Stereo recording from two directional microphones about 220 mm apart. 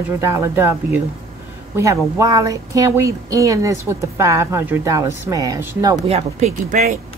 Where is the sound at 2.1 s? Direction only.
15° right (ahead or behind).